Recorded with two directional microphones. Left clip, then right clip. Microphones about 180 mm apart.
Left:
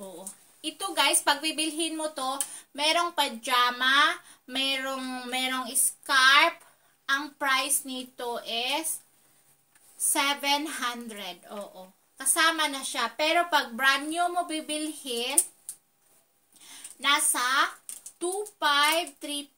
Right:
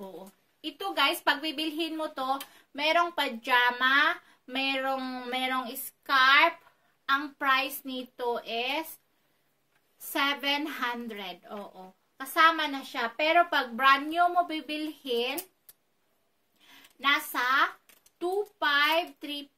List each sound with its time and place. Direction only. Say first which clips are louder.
0.6 s speech: left 1 dB; 15° right (ahead or behind)
10.1 s speech: left 2 dB; 20° right (ahead or behind)
17.0 s speech: left 1 dB; 15° right (ahead or behind)